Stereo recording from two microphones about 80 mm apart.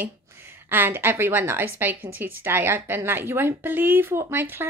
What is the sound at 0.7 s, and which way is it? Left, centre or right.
A woman's voice, right.